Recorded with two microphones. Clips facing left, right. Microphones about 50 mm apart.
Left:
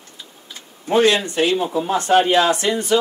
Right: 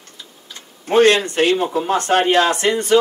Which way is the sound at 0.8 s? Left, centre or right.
Right.